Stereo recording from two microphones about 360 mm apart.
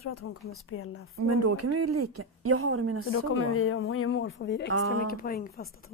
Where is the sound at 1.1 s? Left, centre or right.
Right.